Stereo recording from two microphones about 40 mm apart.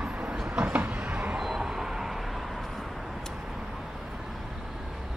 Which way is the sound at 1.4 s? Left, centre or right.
Centre.